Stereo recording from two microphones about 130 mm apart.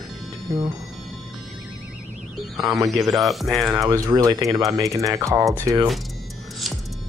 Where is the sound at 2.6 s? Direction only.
25° right (ahead or behind).